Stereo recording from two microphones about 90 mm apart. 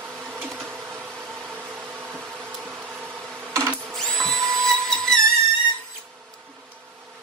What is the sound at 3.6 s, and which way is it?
Printer, 30° right (ahead or behind).